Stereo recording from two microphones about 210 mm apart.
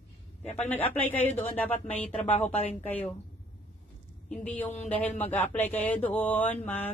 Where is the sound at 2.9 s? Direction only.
10° left (ahead or behind).